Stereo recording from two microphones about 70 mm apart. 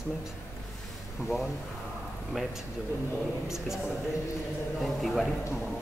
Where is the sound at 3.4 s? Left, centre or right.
Centre.